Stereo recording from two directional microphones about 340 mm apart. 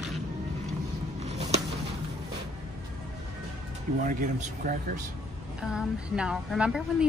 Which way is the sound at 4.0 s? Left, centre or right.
Right.